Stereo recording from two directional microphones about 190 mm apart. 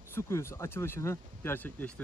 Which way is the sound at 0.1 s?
15° left (ahead or behind).